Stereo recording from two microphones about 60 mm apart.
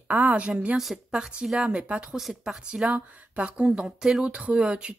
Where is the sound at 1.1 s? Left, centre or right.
Centre.